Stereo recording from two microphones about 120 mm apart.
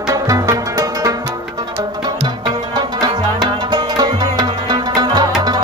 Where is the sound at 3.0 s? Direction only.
35° right (ahead or behind).